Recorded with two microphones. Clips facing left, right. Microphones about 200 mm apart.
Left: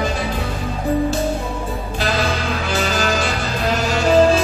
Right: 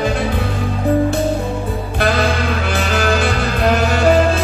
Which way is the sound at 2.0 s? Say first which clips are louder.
Right 4 dB; 60° right (ahead or behind).